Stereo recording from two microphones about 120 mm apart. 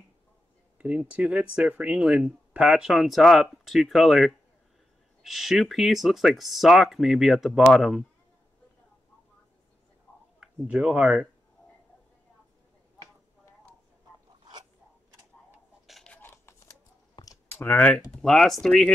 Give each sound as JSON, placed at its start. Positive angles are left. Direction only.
{"t": 0.7, "sound": "speech", "side_deg": -10}
{"t": 10.4, "sound": "speech", "side_deg": -5}
{"t": 15.9, "sound": "a sound", "side_deg": 5}
{"t": 16.2, "sound": "a sound", "side_deg": 20}
{"t": 17.1, "sound": "clicking", "side_deg": 30}
{"t": 17.5, "sound": "speech", "side_deg": 15}